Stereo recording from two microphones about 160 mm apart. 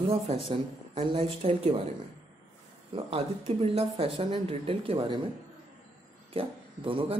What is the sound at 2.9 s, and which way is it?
Speech, 35° right (ahead or behind).